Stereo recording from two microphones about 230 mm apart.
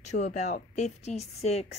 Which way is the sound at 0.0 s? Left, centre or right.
Left.